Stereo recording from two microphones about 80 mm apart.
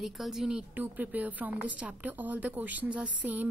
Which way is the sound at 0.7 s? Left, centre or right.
Right.